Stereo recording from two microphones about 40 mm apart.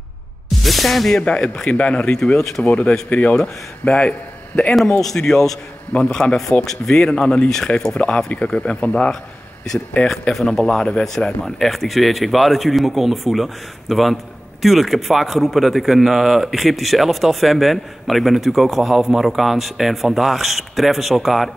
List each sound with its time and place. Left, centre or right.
0.6 s speech: centre
1.2 s speech: left
2.3 s speech: centre
2.6 s speech: left
5.0 s speech: centre; by 10.1 s left
10.3 s speech: centre
11.4 s speech: centre